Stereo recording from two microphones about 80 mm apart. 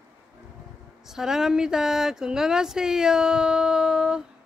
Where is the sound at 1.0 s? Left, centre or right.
Centre.